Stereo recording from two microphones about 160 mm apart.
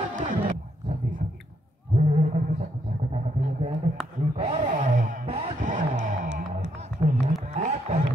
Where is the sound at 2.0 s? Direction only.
45° right (ahead or behind).